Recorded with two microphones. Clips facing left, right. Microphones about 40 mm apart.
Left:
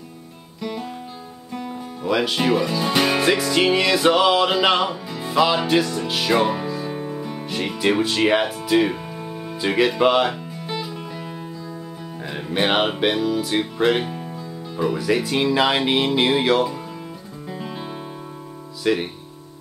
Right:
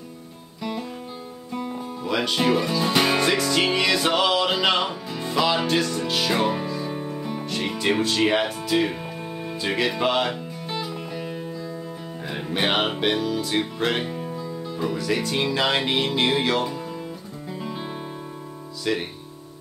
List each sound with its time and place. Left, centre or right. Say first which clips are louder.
0.6 s guitar: left 1 dB; centre
2.0 s speech: left 2 dB; centre
9.2 s music: left 1 dB; centre
9.6 s music: left 6 dB; centre
12.3 s speech: left 3 dB; centre
14.2 s music: right 2 dB; centre
14.8 s speech: left 5 dB; centre
17.5 s music: left 1 dB; centre
18.9 s speech: left 5 dB; centre